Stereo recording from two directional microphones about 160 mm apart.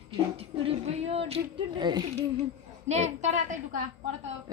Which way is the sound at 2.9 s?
45° right (ahead or behind).